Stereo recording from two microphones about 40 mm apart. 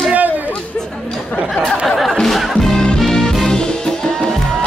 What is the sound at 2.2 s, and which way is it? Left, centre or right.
Music, centre.